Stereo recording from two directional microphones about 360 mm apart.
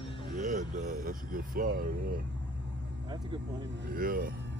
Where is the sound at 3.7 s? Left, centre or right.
Right.